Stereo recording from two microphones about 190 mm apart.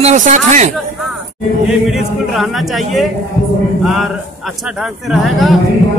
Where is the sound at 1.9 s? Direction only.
Centre (ahead or behind).